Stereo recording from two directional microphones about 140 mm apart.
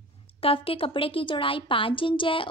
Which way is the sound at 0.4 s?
40° left (ahead or behind).